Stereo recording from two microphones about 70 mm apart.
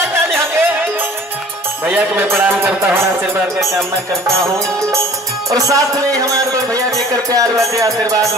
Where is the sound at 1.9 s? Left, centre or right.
Right.